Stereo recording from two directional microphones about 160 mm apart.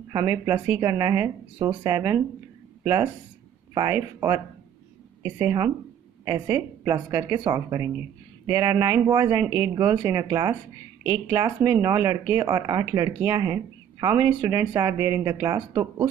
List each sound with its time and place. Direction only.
0.1 s speech: 20° right (ahead or behind)